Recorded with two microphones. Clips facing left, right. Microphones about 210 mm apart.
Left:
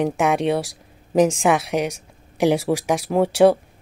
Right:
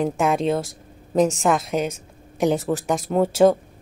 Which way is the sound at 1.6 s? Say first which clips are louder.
Left 1 dB; 80° left.